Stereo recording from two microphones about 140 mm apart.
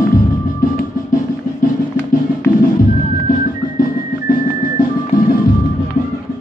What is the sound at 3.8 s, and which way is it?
Music, 90° left.